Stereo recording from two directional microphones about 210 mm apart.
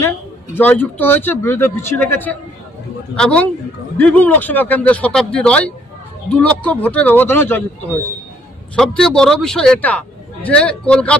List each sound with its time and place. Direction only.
0.6 s a man's voice: 10° left (ahead or behind)
8.7 s a man's voice: 5° left (ahead or behind)